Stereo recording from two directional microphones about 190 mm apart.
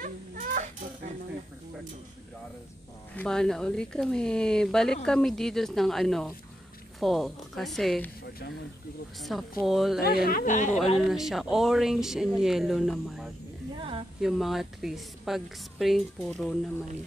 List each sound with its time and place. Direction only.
0.0 s baby cry: 45° right (ahead or behind)
3.2 s a woman's voice: 5° left (ahead or behind)
8.2 s speech: 55° left (ahead or behind)
9.6 s a woman's voice: centre (ahead or behind)
9.9 s speech: 55° left (ahead or behind)
11.1 s a woman's voice: centre (ahead or behind)
13.7 s a sound: 25° right (ahead or behind)
14.2 s a woman's voice: centre (ahead or behind)